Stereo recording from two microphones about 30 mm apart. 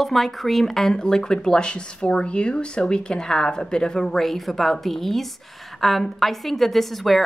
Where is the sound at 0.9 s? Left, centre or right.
Left.